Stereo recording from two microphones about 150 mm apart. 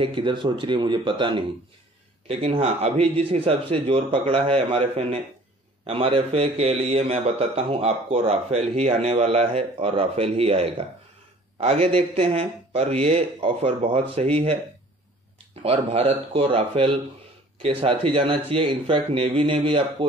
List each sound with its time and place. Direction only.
0.0 s a man's voice: 35° right (ahead or behind)
15.6 s a man's voice: 40° right (ahead or behind)